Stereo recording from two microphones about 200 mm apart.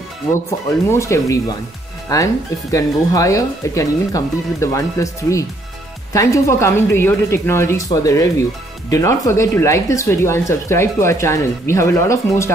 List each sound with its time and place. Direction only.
0.8 s speech: 15° left (ahead or behind)